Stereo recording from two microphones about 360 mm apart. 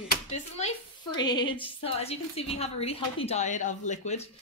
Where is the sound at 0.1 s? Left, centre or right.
Centre.